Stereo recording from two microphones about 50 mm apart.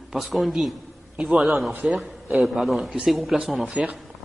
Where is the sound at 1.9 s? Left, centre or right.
Right.